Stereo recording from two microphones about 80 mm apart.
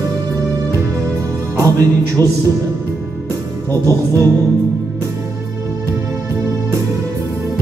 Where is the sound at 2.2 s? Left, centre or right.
Right.